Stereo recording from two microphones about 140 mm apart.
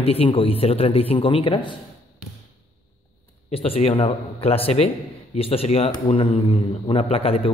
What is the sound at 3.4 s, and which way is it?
A man's voice, 45° left (ahead or behind).